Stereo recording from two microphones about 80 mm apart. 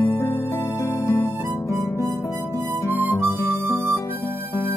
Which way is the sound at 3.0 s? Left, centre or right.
Right.